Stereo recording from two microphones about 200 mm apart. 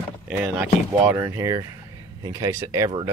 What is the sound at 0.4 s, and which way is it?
Speech, 5° right (ahead or behind).